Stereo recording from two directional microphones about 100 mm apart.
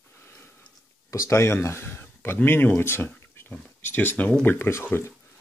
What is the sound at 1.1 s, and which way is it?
Speech, 30° left (ahead or behind).